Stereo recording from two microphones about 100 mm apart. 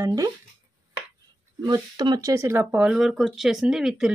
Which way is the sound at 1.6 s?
50° right (ahead or behind).